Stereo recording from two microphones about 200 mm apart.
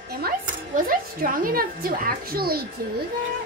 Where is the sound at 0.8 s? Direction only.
45° right (ahead or behind).